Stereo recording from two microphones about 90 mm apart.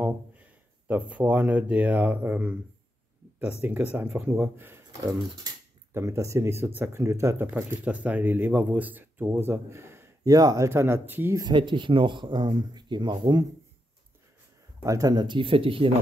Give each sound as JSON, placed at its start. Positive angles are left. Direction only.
{"t": 0.0, "sound": "speech", "side_deg": -15}
{"t": 5.9, "sound": "speech", "side_deg": -35}
{"t": 10.2, "sound": "speech", "side_deg": -45}
{"t": 10.7, "sound": "speech", "side_deg": -30}
{"t": 11.5, "sound": "speech", "side_deg": -65}
{"t": 14.9, "sound": "speech", "side_deg": -45}